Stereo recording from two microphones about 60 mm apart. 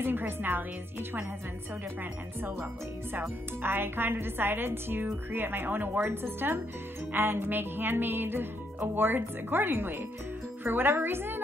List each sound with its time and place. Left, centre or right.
0.0 s speech: right
3.2 s speech: right